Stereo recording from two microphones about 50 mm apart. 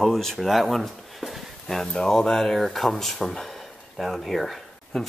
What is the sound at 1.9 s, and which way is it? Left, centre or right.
Speech, centre.